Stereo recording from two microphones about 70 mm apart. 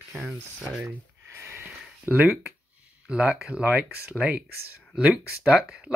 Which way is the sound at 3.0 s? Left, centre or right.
Centre.